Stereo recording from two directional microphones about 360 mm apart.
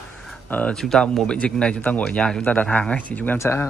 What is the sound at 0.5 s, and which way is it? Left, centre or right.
Speech, centre.